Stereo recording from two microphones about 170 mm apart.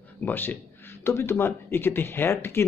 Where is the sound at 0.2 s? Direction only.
10° left (ahead or behind).